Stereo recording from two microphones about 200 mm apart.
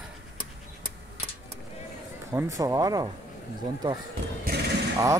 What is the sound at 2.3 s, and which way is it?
Speech, 15° right (ahead or behind).